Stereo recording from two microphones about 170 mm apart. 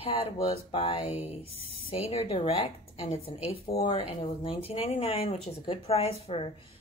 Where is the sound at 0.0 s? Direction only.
35° left (ahead or behind).